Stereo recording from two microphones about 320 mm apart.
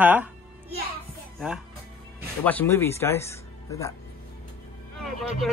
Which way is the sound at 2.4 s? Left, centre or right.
Centre.